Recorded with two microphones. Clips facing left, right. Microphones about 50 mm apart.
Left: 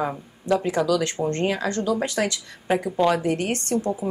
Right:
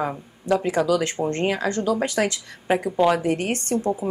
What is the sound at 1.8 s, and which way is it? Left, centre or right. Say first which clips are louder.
Speech: right 1 dB; right.